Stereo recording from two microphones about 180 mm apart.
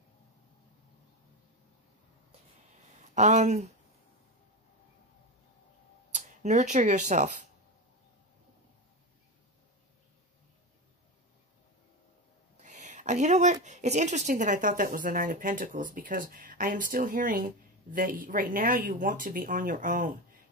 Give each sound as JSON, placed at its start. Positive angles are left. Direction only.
{"t": 3.2, "sound": "speech", "side_deg": -40}
{"t": 6.1, "sound": "speech", "side_deg": -40}
{"t": 12.6, "sound": "speech", "side_deg": -40}